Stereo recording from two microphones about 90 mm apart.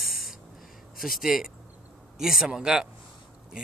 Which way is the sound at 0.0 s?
Centre (ahead or behind).